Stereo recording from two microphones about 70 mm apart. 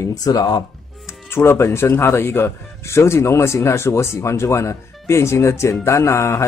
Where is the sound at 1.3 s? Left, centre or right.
Left.